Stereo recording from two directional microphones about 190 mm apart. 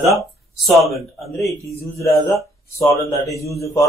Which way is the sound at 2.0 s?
15° left (ahead or behind).